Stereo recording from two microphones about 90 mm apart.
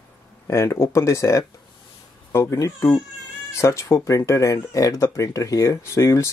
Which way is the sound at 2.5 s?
35° left (ahead or behind).